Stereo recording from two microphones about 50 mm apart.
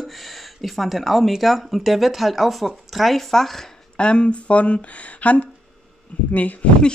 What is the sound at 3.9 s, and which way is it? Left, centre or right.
Speech, centre.